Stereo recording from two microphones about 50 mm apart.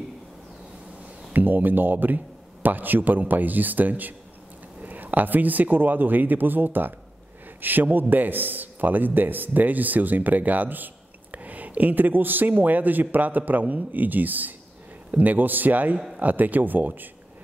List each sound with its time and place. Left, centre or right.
1.3 s a man's voice: right